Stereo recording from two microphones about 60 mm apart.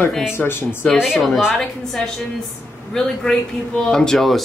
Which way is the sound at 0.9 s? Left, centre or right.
Centre.